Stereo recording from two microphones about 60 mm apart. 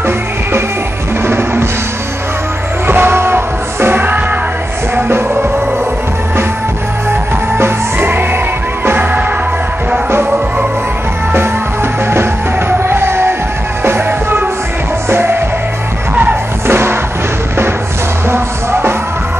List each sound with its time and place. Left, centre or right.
1.2 s drum: right
2.9 s music: right
7.5 s music: right
12.1 s music: right
18.3 s music: right